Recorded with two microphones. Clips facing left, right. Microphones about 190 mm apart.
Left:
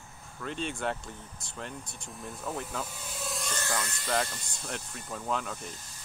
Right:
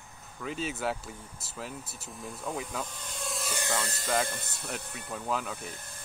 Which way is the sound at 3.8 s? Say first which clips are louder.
Right 3 dB; 40° right (ahead or behind).